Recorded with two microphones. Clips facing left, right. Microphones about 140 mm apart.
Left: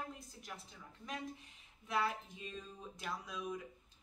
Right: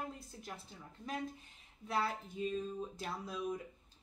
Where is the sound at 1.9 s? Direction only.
30° right (ahead or behind).